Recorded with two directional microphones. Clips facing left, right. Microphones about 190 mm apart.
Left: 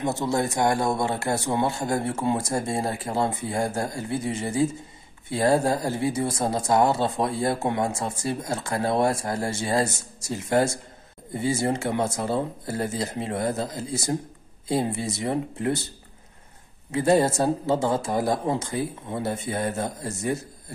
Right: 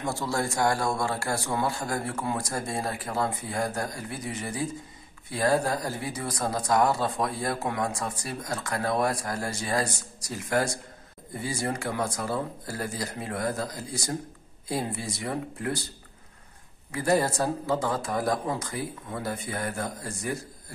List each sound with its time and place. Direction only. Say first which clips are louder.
0.0 s speech: left 4 dB; 20° left (ahead or behind)
16.9 s speech: left 5 dB; 25° left (ahead or behind)